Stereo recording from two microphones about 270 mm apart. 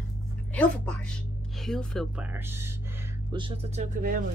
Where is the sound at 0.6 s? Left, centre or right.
Centre.